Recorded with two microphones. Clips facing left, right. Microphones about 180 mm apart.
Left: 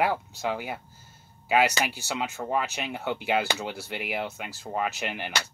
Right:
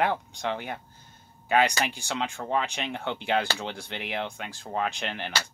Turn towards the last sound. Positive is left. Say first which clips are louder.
# left 1 dB
turn(degrees=10)  # may be behind; listen again after turning